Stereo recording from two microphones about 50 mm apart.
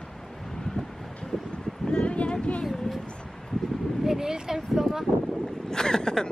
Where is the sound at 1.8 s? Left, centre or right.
Left.